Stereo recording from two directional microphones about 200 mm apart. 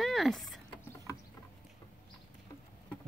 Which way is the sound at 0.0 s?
Centre (ahead or behind).